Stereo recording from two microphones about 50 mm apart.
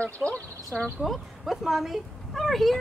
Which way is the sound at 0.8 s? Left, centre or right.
Centre.